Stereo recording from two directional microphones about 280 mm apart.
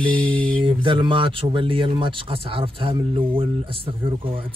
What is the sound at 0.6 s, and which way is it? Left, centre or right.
Speech, centre.